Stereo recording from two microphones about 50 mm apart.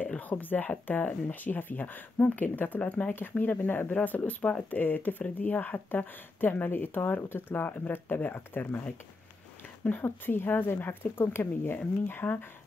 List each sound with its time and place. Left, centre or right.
0.2 s speech: left
9.8 s speech: left